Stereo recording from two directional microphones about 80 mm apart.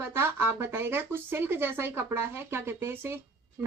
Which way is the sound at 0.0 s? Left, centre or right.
Right.